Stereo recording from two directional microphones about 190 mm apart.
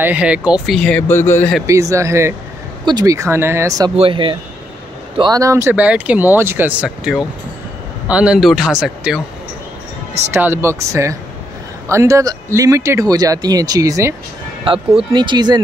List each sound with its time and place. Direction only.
0.0 s speech: 5° right (ahead or behind); by 1.5 s 10° left (ahead or behind)
1.7 s speech: 15° right (ahead or behind)
3.9 s speech: 30° right (ahead or behind); by 9.2 s 5° right (ahead or behind)
10.3 s speech: 10° right (ahead or behind)
14.7 s speech: 30° right (ahead or behind)